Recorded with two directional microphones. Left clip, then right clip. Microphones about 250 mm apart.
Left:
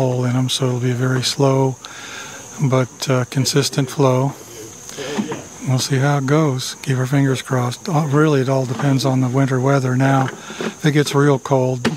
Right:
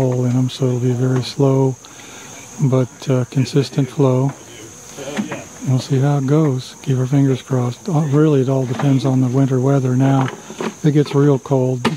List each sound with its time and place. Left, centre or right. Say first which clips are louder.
0.0 s speech: right 1 dB; left
2.7 s speech: left 1 dB; left
5.7 s speech: left 1 dB; left